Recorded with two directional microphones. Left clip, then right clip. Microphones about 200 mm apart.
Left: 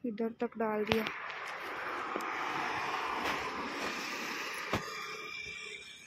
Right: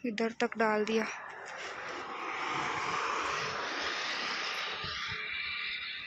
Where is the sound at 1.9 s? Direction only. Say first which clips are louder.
Left 3 dB; 10° right (ahead or behind); by 3.2 s 5° left (ahead or behind).